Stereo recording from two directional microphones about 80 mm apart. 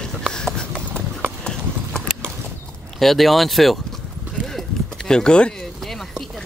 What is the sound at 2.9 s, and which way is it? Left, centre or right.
Speech, centre.